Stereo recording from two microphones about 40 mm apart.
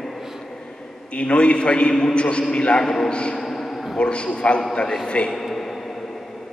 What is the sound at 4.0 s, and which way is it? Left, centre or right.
A man's voice, left.